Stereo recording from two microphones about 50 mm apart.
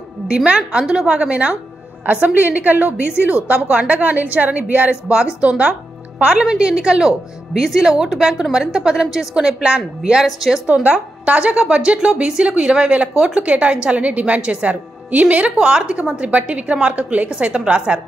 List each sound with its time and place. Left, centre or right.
0.3 s a woman's voice: right
5.0 s a woman's voice: centre
10.2 s a woman's voice: centre
10.7 s a woman's voice: right
15.6 s a woman's voice: centre